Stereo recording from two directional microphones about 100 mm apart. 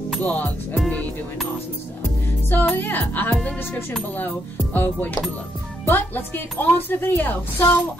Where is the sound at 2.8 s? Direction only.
20° left (ahead or behind).